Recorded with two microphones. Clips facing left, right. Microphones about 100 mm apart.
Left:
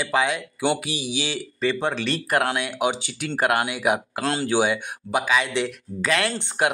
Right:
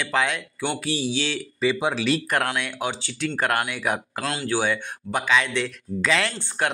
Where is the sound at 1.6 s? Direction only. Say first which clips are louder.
Right 1 dB; 10° right (ahead or behind).